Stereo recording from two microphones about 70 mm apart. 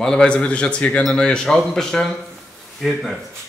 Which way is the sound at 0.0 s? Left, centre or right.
Centre.